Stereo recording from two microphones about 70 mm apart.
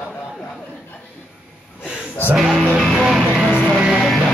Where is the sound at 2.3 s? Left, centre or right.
Centre.